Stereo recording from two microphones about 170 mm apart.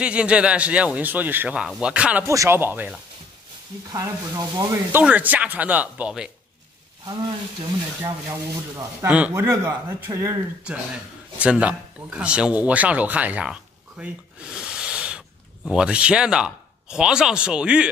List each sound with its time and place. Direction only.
0.0 s speech: 5° right (ahead or behind)
8.0 s speech: 20° right (ahead or behind)